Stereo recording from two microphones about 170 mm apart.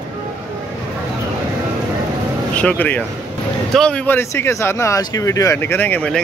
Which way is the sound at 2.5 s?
10° left (ahead or behind).